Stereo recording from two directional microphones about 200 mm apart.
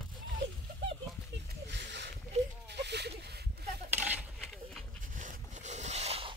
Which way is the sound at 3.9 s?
10° right (ahead or behind).